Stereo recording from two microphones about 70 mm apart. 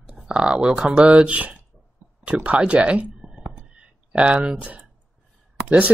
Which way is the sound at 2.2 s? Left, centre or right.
Centre.